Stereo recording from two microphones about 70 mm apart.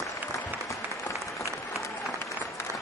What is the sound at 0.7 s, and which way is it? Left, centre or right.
Applause, left.